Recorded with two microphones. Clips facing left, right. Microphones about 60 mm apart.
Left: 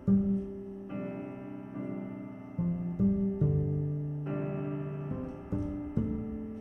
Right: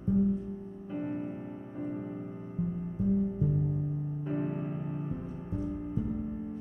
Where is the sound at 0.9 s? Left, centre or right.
Centre.